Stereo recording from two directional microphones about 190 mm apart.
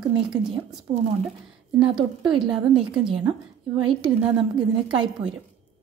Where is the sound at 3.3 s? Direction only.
25° right (ahead or behind).